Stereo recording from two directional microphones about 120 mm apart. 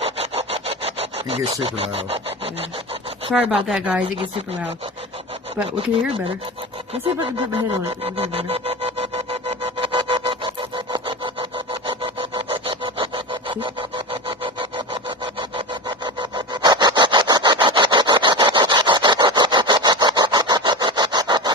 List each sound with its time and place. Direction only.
0.0 s sawing: 55° right (ahead or behind)
3.3 s speech: 5° right (ahead or behind)
8.0 s sawing: 55° right (ahead or behind)
9.8 s wood: 50° right (ahead or behind)
12.6 s wood: 45° right (ahead or behind)
16.2 s sawing: 40° right (ahead or behind)